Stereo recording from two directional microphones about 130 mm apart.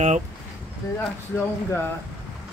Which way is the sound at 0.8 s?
30° left (ahead or behind).